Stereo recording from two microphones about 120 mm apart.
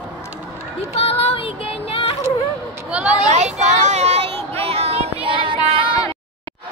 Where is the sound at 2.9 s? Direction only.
10° right (ahead or behind).